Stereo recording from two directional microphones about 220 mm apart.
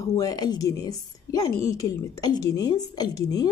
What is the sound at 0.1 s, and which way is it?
Speech, 15° left (ahead or behind).